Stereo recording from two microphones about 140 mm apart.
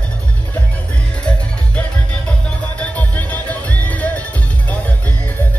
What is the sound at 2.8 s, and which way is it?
Music, 10° left (ahead or behind).